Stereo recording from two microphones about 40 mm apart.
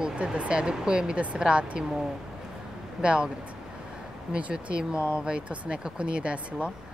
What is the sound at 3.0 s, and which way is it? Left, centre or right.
Speech, right.